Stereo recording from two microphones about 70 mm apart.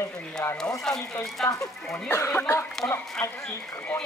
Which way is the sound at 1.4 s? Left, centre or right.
Left.